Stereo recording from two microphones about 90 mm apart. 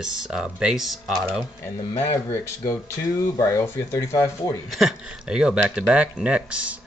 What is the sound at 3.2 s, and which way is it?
Speech, 35° left (ahead or behind).